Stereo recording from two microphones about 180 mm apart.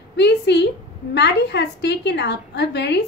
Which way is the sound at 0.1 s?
70° left (ahead or behind).